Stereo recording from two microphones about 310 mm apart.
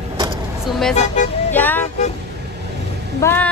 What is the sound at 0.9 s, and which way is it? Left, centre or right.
Speech, left.